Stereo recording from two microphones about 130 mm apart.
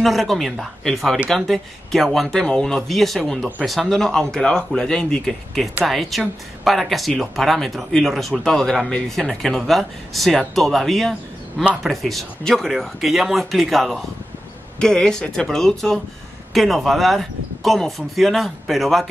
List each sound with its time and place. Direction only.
0.0 s speech: centre (ahead or behind)